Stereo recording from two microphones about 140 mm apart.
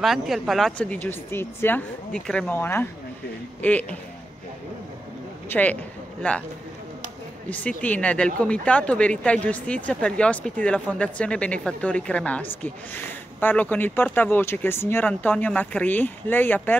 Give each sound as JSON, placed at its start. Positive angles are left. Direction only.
{"t": 0.0, "sound": "speech", "side_deg": 0}
{"t": 2.1, "sound": "speech", "side_deg": 5}
{"t": 5.5, "sound": "speech", "side_deg": 10}
{"t": 7.4, "sound": "speech", "side_deg": 10}